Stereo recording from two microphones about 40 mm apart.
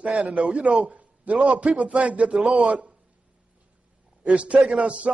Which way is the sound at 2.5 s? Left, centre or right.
Centre.